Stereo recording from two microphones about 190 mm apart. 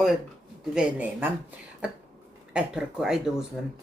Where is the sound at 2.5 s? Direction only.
5° right (ahead or behind).